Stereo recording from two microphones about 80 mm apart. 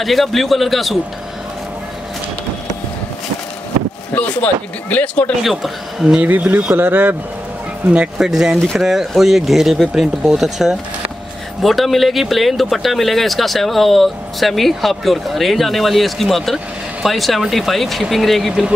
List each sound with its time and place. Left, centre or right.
0.0 s speech: centre
4.1 s speech: centre
5.4 s speech: centre
6.1 s speech: centre
7.9 s speech: centre